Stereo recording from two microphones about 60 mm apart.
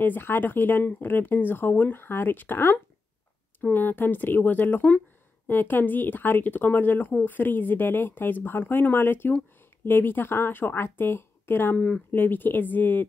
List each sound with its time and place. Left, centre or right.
0.0 s speech: left